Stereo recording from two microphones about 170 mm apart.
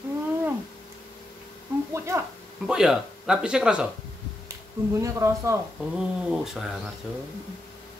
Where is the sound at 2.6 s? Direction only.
5° right (ahead or behind).